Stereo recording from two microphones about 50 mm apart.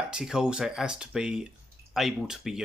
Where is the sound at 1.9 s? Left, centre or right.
Centre.